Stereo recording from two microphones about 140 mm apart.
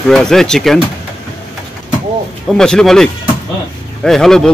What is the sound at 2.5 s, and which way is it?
Speech, 5° left (ahead or behind).